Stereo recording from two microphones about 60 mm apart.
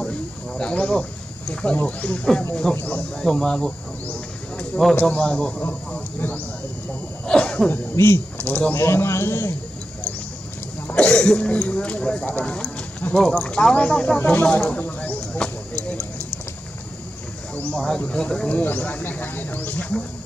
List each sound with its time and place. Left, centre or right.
0.6 s speech: centre
3.2 s speech: centre
7.2 s speech: centre
7.9 s speech: left
8.4 s speech: left
8.7 s speech: left
11.0 s speech: centre
14.1 s speech: left
14.6 s a sound: left
17.7 s speech: centre
18.5 s speech: left